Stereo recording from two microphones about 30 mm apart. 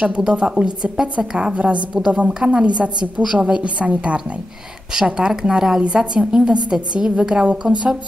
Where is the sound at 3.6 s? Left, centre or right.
Right.